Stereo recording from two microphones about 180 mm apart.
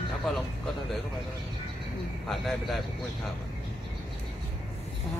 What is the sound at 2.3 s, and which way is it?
Speech, centre (ahead or behind).